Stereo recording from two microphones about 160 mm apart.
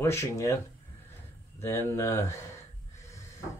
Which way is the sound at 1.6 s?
15° left (ahead or behind).